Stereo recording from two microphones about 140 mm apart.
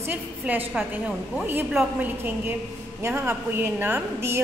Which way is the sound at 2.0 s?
15° right (ahead or behind).